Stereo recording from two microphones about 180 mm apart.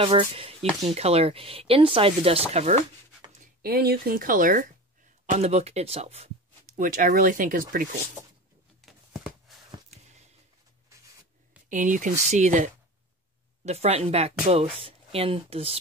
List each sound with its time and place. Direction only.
0.4 s speech: 35° right (ahead or behind)
3.6 s speech: 55° right (ahead or behind); by 6.3 s 35° right (ahead or behind)
6.8 s speech: 50° right (ahead or behind)
8.8 s a sound: centre (ahead or behind)
11.7 s speech: 45° right (ahead or behind)